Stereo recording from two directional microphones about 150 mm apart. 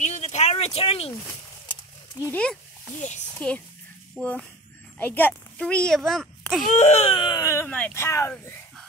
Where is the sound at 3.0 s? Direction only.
50° left (ahead or behind).